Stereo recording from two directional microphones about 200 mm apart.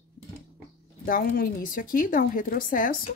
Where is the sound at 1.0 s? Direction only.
45° left (ahead or behind).